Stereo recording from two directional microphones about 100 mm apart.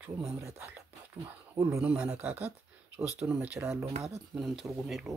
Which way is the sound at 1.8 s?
10° right (ahead or behind).